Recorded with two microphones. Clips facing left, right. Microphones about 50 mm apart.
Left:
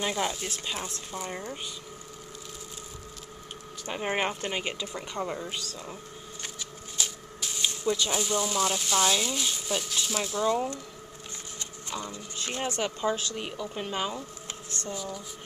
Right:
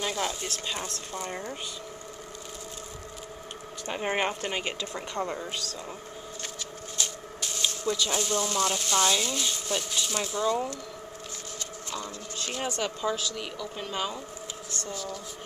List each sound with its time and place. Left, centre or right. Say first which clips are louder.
0.0 s speech: left 1 dB; centre
3.8 s speech: right 1 dB; centre
7.0 s speech: even; centre
11.9 s a woman's voice: left 1 dB; centre